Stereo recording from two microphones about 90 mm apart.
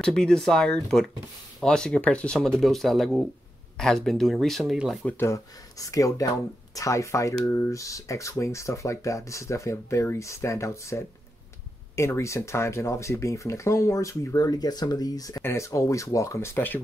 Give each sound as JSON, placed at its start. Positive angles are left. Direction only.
{"t": 0.0, "sound": "speech", "side_deg": 10}
{"t": 5.2, "sound": "speech", "side_deg": 35}